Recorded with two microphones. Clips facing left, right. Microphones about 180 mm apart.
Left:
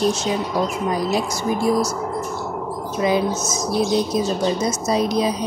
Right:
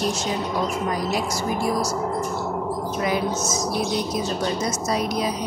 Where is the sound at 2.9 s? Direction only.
20° left (ahead or behind).